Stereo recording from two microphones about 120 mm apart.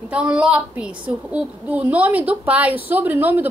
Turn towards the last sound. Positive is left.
turn(degrees=-15)  # may be behind; listen again after turning